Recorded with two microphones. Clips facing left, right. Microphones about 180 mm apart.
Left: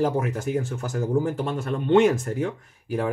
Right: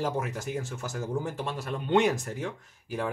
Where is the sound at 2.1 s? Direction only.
55° left (ahead or behind).